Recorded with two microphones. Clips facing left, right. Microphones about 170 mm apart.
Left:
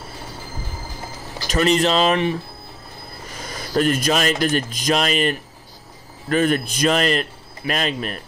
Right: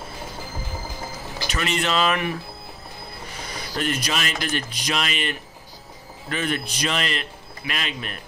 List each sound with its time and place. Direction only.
1.5 s speech: 35° left (ahead or behind)
3.3 s a man's voice: 45° left (ahead or behind)